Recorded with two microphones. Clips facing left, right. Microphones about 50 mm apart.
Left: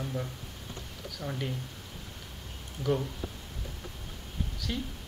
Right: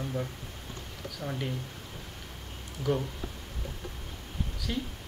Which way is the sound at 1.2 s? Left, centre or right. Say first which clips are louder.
Right 1 dB; centre.